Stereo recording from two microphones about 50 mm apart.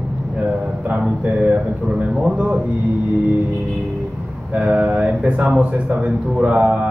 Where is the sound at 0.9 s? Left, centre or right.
Right.